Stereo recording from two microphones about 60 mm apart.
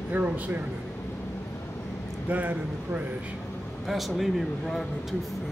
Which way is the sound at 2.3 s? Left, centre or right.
Right.